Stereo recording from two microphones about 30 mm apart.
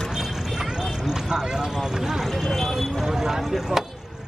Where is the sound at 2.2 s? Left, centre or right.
Centre.